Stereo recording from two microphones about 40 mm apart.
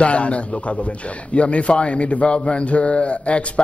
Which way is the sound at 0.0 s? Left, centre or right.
Left.